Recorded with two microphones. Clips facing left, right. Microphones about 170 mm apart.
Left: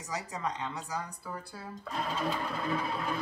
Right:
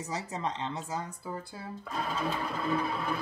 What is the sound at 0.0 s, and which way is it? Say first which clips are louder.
A woman's voice: right 2 dB; 30° right (ahead or behind).